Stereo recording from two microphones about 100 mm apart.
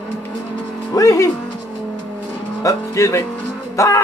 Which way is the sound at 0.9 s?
35° left (ahead or behind).